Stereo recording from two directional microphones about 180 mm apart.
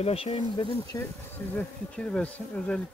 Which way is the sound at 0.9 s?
20° left (ahead or behind).